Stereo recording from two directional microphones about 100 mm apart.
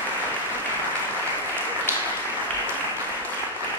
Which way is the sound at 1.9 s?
20° right (ahead or behind).